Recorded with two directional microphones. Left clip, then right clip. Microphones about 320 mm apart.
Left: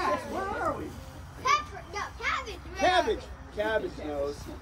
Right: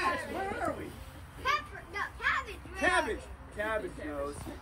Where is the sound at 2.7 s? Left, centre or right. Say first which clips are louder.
Left 4 dB; right.